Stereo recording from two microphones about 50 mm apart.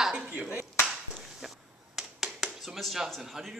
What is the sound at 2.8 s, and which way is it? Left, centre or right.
Speech, centre.